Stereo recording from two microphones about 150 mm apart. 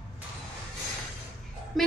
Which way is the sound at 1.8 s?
Centre (ahead or behind).